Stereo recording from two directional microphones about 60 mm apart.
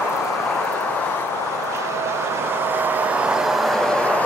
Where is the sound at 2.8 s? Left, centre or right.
Right.